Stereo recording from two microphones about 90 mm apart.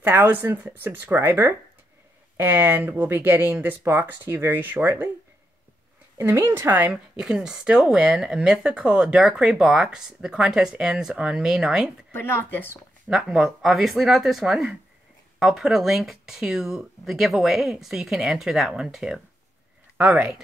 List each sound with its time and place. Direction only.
0.0 s speech: 25° right (ahead or behind)
6.1 s speech: 30° right (ahead or behind)
6.9 s speech: 10° right (ahead or behind)
12.1 s speech: 25° left (ahead or behind)
13.1 s speech: 5° right (ahead or behind)
20.0 s speech: 15° right (ahead or behind)